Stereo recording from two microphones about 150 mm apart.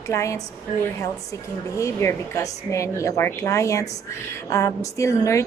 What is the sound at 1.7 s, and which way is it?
A woman's voice, 20° left (ahead or behind).